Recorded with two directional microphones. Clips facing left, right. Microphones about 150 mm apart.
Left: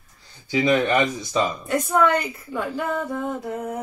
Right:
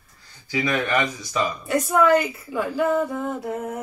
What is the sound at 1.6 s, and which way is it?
A woman's voice, 5° right (ahead or behind).